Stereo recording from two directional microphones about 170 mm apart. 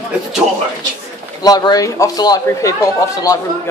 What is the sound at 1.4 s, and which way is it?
A man's voice, 25° left (ahead or behind).